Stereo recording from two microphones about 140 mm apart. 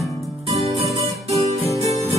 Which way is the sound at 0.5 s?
45° right (ahead or behind).